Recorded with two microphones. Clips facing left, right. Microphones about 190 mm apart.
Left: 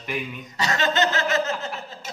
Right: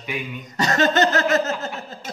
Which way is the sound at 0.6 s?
45° right (ahead or behind).